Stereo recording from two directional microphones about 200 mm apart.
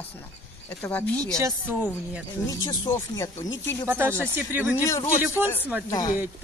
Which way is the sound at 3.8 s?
10° right (ahead or behind).